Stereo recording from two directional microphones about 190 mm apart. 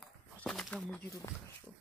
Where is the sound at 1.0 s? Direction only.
15° left (ahead or behind).